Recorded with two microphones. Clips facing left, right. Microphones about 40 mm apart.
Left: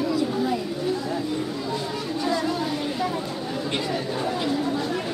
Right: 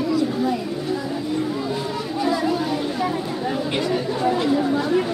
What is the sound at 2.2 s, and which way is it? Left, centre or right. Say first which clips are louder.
Chatter: right 4 dB; centre.